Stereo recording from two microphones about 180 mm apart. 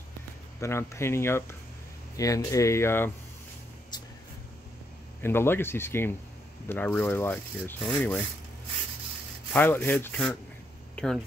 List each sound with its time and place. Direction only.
0.6 s rub: 15° left (ahead or behind)
3.9 s a sound: 25° left (ahead or behind)
5.2 s rub: 10° left (ahead or behind)
9.5 s rub: 10° left (ahead or behind)
11.0 s speech: 5° left (ahead or behind)